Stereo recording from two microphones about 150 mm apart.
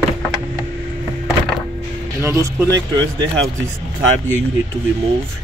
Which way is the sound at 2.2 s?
25° right (ahead or behind).